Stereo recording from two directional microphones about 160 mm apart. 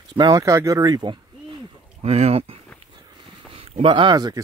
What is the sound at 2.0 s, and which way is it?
Speech, 40° right (ahead or behind).